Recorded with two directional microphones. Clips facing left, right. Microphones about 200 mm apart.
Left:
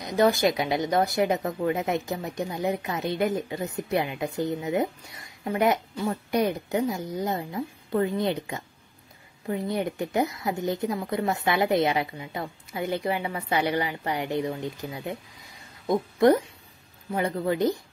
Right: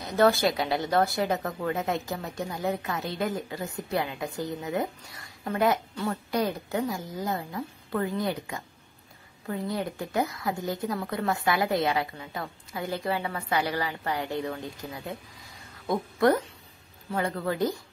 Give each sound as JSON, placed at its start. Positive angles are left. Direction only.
{"t": 0.0, "sound": "a woman's voice", "side_deg": 15}